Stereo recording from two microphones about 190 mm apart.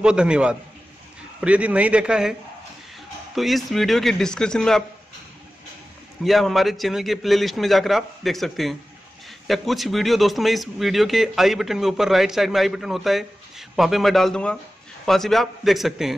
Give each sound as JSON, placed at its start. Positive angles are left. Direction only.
{"t": 0.0, "sound": "a man's voice", "side_deg": -5}
{"t": 3.3, "sound": "a man's voice", "side_deg": 0}
{"t": 6.2, "sound": "a man's voice", "side_deg": 0}